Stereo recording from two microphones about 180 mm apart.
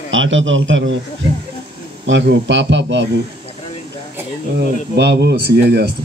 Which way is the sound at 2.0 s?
80° right.